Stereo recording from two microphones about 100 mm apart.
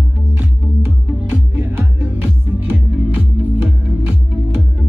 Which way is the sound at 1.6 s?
20° right (ahead or behind).